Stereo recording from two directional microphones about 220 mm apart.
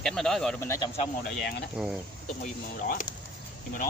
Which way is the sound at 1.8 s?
5° right (ahead or behind).